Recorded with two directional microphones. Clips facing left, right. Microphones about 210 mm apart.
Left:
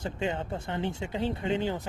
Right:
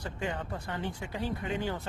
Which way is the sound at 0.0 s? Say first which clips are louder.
Left 4 dB; 25° left (ahead or behind).